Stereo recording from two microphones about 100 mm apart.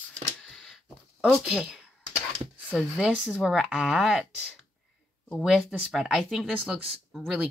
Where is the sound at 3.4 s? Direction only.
Centre (ahead or behind).